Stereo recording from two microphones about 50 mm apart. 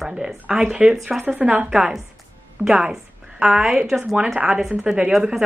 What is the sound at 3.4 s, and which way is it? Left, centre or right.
Speech, centre.